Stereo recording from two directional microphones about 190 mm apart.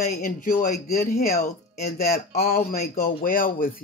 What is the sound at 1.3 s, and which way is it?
Speech, 40° left (ahead or behind).